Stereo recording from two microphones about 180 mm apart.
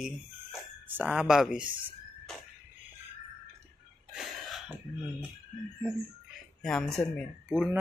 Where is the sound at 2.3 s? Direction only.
Centre (ahead or behind).